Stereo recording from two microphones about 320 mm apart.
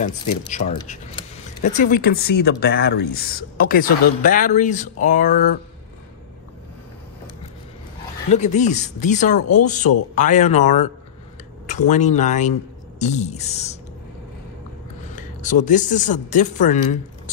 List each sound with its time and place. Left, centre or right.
0.5 s speech: left
8.3 s speech: left
15.1 s speech: left